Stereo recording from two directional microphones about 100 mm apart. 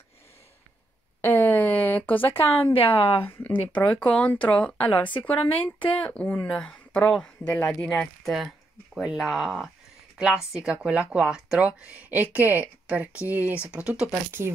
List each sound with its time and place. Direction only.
1.2 s a sound: 20° left (ahead or behind)
2.3 s a woman's voice: 70° left (ahead or behind)
3.3 s speech: 25° left (ahead or behind); by 14.1 s 10° right (ahead or behind)